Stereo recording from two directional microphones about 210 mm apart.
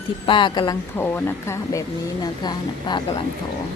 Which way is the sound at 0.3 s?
20° left (ahead or behind).